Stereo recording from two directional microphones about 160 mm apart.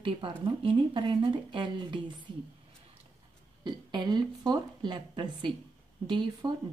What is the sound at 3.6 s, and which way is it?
Speech, 30° right (ahead or behind).